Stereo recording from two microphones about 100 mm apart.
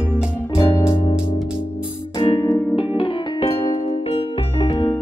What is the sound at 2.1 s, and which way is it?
Music, 55° left (ahead or behind).